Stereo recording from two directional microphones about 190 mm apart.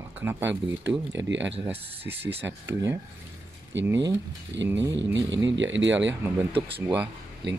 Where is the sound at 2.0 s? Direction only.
10° right (ahead or behind).